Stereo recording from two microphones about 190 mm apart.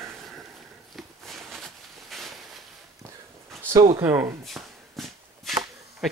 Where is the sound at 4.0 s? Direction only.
15° right (ahead or behind).